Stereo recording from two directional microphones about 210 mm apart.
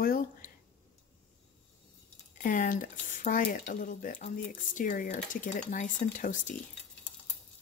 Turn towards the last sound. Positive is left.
turn(degrees=35)  # may be behind; listen again after turning